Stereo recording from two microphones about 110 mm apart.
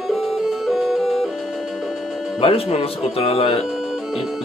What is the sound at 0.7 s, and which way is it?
Music, centre (ahead or behind).